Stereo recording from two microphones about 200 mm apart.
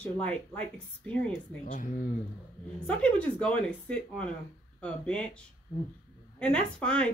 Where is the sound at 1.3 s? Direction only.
40° left (ahead or behind).